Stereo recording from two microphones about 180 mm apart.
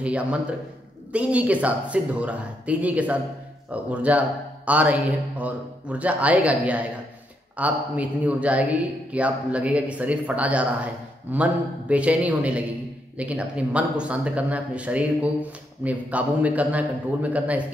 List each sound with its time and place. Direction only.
0.0 s a man's voice: 5° right (ahead or behind)